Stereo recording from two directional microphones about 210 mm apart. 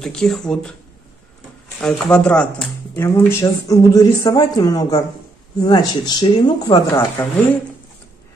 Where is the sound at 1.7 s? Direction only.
5° left (ahead or behind).